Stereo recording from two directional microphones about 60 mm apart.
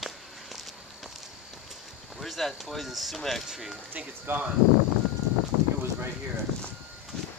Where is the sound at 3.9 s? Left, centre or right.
Right.